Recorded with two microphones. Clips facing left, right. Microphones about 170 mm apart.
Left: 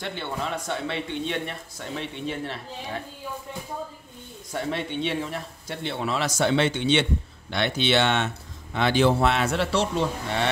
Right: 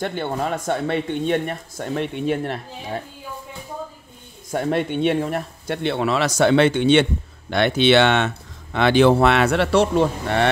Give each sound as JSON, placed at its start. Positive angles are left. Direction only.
{"t": 0.0, "sound": "speech", "side_deg": -50}
{"t": 4.5, "sound": "speech", "side_deg": -50}